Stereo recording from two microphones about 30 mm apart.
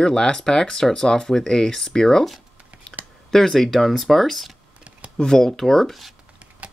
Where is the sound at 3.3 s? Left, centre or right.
Centre.